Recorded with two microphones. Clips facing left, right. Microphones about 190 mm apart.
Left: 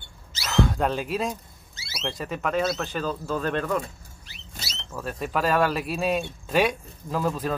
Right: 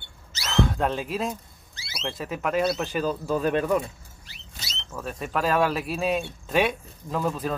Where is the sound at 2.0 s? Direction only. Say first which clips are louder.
Even; 5° right (ahead or behind).